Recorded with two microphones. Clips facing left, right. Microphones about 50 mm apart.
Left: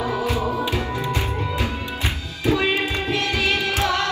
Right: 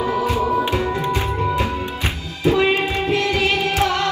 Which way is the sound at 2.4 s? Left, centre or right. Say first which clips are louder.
Right 4 dB; right.